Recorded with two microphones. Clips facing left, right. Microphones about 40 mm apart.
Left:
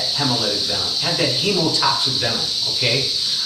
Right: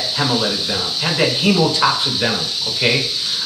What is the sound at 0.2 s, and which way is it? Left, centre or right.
Speech, right.